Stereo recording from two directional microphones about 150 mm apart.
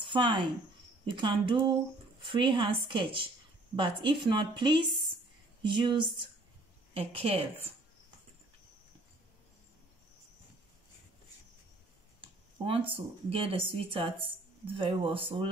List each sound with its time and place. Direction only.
0.0 s a woman's voice: 35° right (ahead or behind)
12.2 s speech: 35° right (ahead or behind)